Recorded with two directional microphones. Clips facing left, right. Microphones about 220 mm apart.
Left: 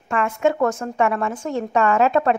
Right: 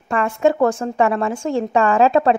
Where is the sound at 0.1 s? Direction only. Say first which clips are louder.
Right 3 dB; 35° right (ahead or behind).